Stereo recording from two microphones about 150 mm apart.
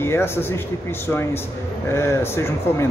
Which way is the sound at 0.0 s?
15° left (ahead or behind).